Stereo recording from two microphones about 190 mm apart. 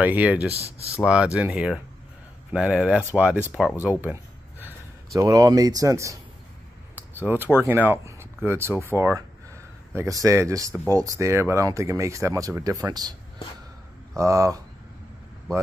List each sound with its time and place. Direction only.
0.0 s speech: 10° right (ahead or behind)
0.5 s speech: 30° right (ahead or behind)
1.0 s speech: 5° right (ahead or behind)
9.9 s speech: 15° right (ahead or behind)
14.1 s speech: 15° right (ahead or behind)